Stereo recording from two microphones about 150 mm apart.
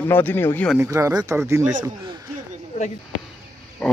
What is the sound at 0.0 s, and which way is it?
Speech, 15° left (ahead or behind).